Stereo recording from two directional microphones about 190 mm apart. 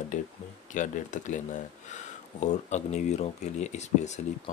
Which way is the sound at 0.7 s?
40° left (ahead or behind).